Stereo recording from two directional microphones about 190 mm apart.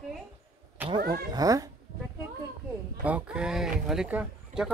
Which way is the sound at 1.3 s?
20° right (ahead or behind).